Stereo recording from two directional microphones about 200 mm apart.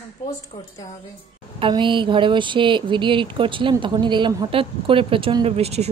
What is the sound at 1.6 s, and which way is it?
Speech, 25° right (ahead or behind).